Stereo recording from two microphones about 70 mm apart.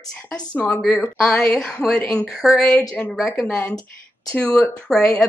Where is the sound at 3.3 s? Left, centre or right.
Centre.